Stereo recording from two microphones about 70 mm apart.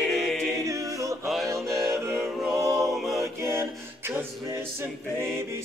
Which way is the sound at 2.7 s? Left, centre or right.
Centre.